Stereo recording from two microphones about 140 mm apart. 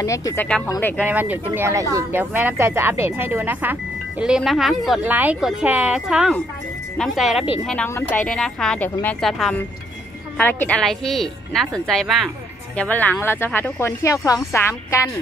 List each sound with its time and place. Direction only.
0.0 s a woman's voice: 25° left (ahead or behind)
1.0 s speech: 10° right (ahead or behind)
4.4 s a woman's voice: centre (ahead or behind); by 15.0 s 20° left (ahead or behind)